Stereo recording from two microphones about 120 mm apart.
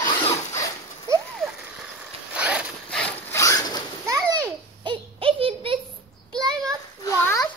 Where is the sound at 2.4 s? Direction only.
10° right (ahead or behind).